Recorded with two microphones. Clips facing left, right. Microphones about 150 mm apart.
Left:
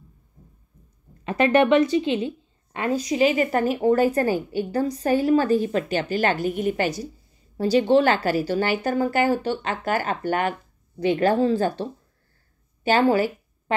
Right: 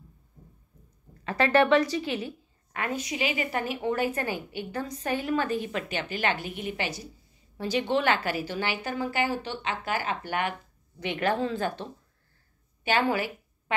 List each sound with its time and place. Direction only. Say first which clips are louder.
1.2 s a woman's voice: left 4 dB; 20° left (ahead or behind); by 13.7 s 40° left (ahead or behind)